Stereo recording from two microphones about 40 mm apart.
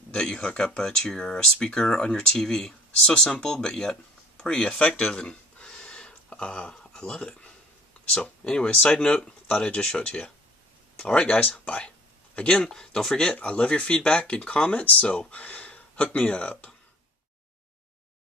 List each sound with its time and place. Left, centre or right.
0.1 s speech: left
0.5 s speech: left
0.7 s speech: centre
2.3 s speech: centre
4.5 s speech: left
5.3 s a sound: left
8.1 s speech: left
8.6 s speech: left
8.9 s speech: left
9.8 s speech: centre
11.3 s speech: left
12.5 s speech: centre
13.4 s speech: left